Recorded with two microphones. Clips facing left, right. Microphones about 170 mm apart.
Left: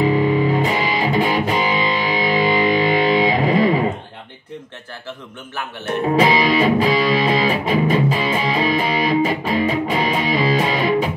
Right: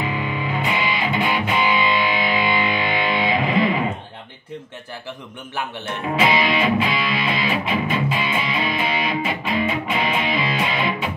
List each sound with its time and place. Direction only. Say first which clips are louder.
0.0 s music: left 9 dB; 40° left (ahead or behind)
6.1 s music: left 3 dB; 40° left (ahead or behind)